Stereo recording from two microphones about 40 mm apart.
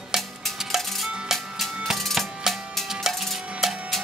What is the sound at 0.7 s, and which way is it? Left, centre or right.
Music, centre.